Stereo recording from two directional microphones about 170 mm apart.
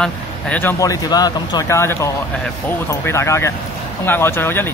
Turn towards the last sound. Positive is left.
turn(degrees=10)  # may be behind; listen again after turning